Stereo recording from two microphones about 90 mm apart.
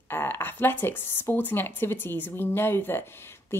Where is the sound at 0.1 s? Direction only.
25° left (ahead or behind).